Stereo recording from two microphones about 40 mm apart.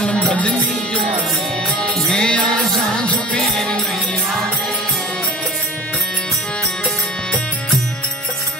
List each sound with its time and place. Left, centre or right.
0.3 s music: left
2.1 s music: left